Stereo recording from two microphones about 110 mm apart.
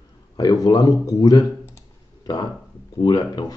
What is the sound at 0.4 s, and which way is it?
Speech, 35° left (ahead or behind).